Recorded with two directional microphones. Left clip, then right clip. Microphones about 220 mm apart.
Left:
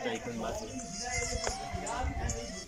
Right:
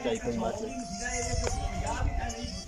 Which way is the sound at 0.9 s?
15° right (ahead or behind).